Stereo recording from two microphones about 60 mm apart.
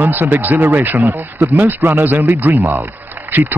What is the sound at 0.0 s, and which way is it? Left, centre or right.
Speech, right.